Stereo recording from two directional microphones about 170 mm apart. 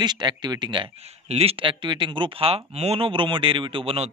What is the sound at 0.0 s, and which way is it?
Speech, 25° right (ahead or behind).